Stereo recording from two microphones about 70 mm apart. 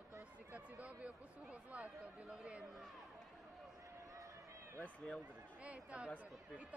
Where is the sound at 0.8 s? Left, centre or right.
Centre.